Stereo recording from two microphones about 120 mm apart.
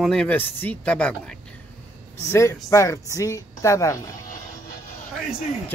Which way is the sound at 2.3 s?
25° left (ahead or behind).